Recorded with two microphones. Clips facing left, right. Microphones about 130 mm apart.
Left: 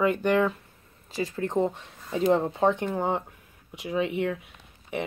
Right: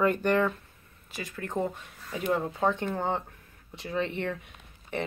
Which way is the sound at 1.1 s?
35° left (ahead or behind).